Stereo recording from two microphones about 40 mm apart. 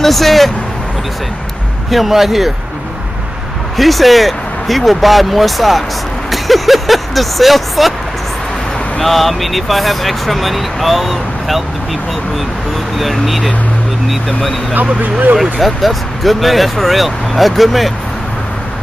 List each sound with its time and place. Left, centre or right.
0.0 s speech: centre
1.9 s speech: centre
3.7 s speech: centre
9.0 s speech: centre
13.0 s speech: centre
14.7 s speech: right
15.6 s speech: centre